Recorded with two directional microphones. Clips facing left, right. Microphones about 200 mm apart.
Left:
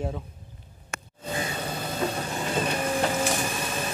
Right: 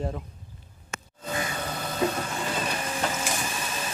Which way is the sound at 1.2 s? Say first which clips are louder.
Even; 25° left (ahead or behind).